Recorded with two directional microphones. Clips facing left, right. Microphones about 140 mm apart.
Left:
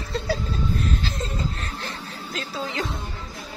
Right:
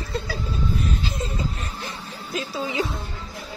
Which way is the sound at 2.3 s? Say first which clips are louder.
Right 4 dB; 10° right (ahead or behind).